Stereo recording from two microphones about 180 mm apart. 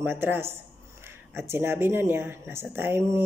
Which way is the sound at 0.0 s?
10° right (ahead or behind).